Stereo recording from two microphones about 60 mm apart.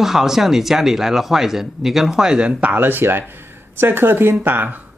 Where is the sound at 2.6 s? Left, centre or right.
Right.